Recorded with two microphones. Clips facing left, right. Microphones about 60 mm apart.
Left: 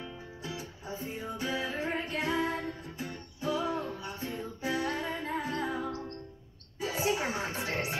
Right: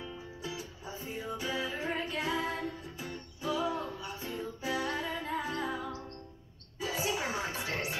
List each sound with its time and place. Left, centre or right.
0.4 s music: left